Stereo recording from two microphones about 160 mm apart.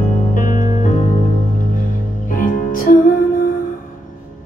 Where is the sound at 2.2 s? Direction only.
55° left (ahead or behind).